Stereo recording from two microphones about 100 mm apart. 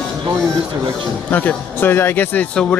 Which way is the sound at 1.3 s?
20° left (ahead or behind).